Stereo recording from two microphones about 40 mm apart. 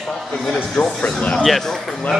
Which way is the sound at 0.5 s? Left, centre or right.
Left.